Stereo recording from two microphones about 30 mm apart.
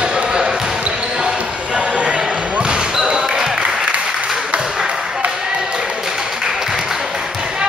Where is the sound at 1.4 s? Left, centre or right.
Right.